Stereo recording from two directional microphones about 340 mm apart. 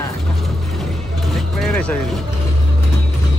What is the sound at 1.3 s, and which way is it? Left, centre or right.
Vehicle, centre.